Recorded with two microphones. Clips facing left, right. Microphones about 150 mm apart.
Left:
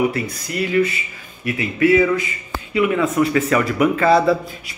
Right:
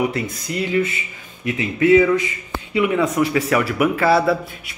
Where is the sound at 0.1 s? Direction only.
20° right (ahead or behind).